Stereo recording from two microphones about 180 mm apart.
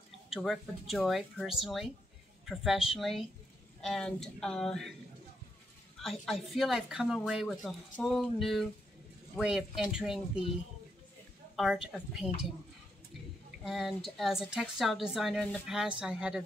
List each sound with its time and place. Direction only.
0.3 s speech: centre (ahead or behind)
5.9 s speech: centre (ahead or behind)
11.5 s speech: centre (ahead or behind)
13.7 s speech: centre (ahead or behind)